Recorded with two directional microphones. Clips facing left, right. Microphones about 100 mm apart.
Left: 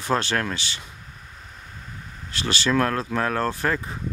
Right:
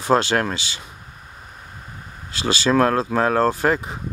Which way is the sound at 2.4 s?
20° right (ahead or behind).